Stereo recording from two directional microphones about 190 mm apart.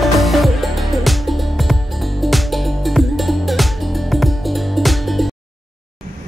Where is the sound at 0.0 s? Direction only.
Centre (ahead or behind).